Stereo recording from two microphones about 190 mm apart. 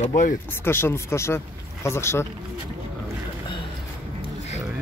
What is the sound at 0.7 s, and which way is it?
Speech, 10° left (ahead or behind).